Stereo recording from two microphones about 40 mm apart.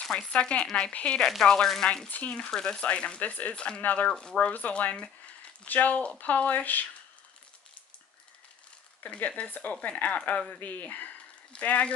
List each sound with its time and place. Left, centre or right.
0.3 s speech: left
1.4 s speech: centre
2.0 s speech: left
2.5 s speech: centre
2.8 s speech: left
3.2 s speech: left
3.5 s speech: left
4.5 s speech: left
9.0 s speech: left